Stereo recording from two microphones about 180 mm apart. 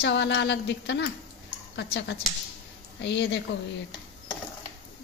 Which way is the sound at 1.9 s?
65° left (ahead or behind).